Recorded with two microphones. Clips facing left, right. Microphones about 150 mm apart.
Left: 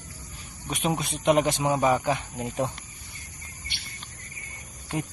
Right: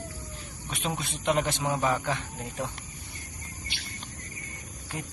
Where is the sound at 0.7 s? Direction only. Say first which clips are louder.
Left 5 dB; 15° left (ahead or behind).